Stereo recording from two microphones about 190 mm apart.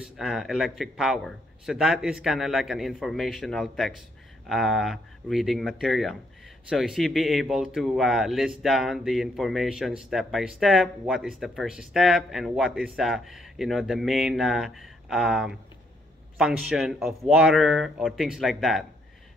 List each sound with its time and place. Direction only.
0.0 s speech: centre (ahead or behind)